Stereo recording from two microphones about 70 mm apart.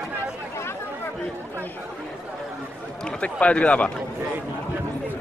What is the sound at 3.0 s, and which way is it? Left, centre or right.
Speech, centre.